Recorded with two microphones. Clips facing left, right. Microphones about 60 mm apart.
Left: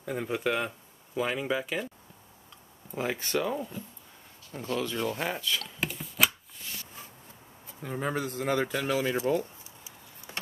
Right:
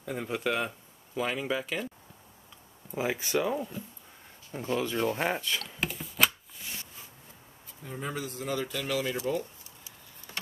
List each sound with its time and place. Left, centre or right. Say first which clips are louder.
0.0 s speech: left 2 dB; centre
2.9 s speech: right 1 dB; centre
4.5 s speech: right 1 dB; centre
5.8 s a sound: right 1 dB; centre
7.8 s speech: left 5 dB; left